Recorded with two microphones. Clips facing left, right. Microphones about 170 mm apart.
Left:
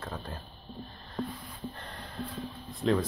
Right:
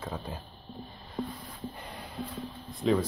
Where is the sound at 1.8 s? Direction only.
10° right (ahead or behind).